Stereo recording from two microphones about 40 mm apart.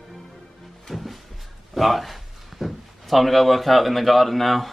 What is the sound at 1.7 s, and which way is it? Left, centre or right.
Speech, centre.